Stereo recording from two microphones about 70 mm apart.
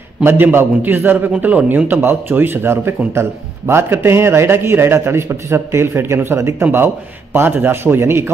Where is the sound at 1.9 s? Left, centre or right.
Right.